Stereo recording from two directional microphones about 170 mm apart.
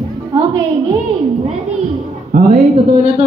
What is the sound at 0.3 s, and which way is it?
Music, 25° right (ahead or behind).